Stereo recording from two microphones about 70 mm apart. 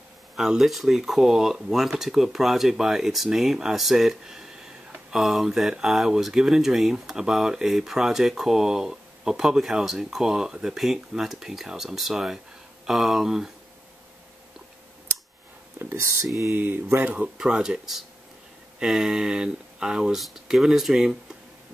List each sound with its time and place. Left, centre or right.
0.4 s speech: centre
16.5 s speech: right
17.1 s speech: centre